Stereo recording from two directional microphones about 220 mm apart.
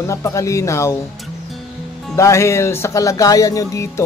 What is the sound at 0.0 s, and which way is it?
Music, 15° left (ahead or behind).